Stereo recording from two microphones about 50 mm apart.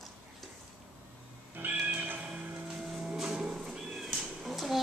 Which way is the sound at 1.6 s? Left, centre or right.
Right.